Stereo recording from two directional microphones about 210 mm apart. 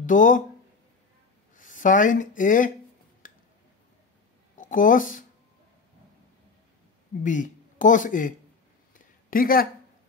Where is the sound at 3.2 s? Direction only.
40° left (ahead or behind).